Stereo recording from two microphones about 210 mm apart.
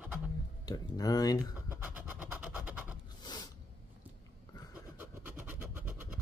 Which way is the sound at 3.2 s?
20° left (ahead or behind).